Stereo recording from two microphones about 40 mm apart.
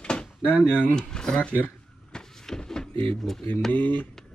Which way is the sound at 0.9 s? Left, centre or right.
Centre.